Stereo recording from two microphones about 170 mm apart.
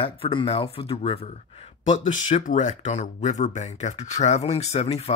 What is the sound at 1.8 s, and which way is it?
Speech, 45° left (ahead or behind).